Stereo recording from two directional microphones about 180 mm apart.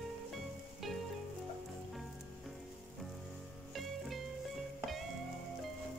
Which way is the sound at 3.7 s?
Centre (ahead or behind).